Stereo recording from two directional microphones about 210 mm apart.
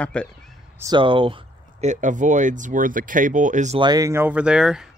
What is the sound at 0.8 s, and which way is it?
Speech, 20° right (ahead or behind).